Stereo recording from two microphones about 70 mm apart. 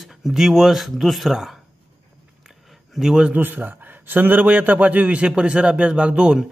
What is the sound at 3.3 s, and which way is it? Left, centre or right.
A man's voice, right.